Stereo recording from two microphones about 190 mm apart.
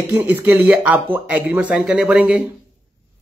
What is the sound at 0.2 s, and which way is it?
Speech, 10° right (ahead or behind).